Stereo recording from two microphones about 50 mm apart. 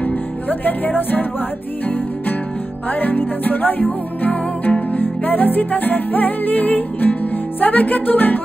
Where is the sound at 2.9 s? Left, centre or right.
Left.